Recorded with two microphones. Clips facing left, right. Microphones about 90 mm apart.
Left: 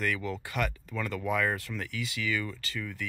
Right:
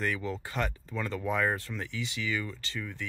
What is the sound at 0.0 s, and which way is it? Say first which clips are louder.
Speech: even; 25° right (ahead or behind).